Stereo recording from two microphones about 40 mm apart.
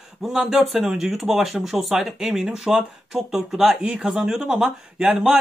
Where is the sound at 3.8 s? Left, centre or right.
Right.